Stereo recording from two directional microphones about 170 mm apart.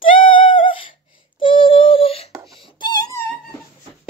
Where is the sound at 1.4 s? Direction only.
30° left (ahead or behind).